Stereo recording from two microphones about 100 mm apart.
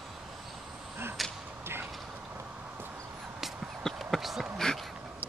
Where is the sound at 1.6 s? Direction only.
25° right (ahead or behind).